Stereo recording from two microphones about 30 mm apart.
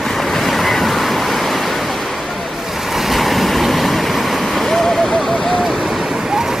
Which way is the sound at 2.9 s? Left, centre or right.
Centre.